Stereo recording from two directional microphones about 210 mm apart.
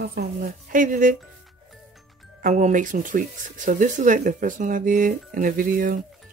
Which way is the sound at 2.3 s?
35° right (ahead or behind).